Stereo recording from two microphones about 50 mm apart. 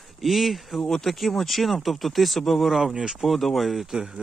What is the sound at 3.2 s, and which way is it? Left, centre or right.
Speech, centre.